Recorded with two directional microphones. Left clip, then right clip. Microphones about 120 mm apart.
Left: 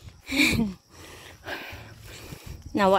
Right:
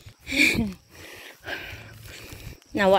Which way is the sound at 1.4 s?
40° left (ahead or behind).